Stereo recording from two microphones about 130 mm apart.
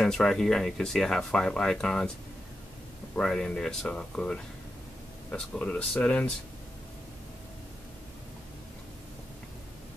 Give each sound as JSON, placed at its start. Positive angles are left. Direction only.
{"t": 0.0, "sound": "speech", "side_deg": 5}
{"t": 3.2, "sound": "speech", "side_deg": 5}